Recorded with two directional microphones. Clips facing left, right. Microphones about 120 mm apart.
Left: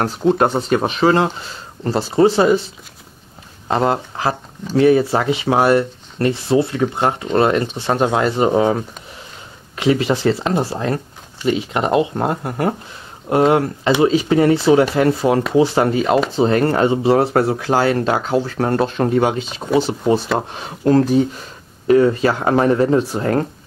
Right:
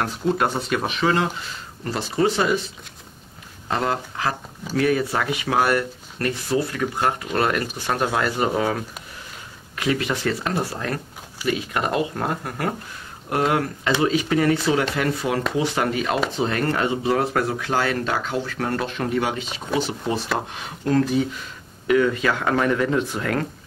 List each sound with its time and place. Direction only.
0.0 s speech: 30° left (ahead or behind)